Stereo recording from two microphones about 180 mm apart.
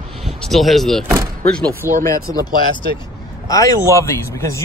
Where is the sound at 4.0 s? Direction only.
15° left (ahead or behind).